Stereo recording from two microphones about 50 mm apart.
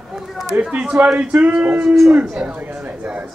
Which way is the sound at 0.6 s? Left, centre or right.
Right.